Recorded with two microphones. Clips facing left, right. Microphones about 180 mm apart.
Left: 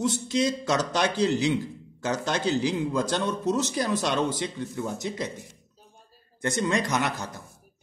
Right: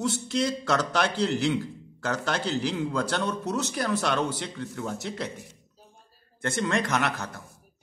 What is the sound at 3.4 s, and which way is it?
Speech, 65° right (ahead or behind).